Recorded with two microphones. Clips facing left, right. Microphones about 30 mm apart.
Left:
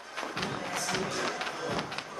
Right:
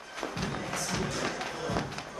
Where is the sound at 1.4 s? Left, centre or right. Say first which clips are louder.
Even; centre.